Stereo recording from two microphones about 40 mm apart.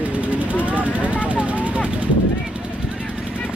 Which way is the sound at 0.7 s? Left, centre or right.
Right.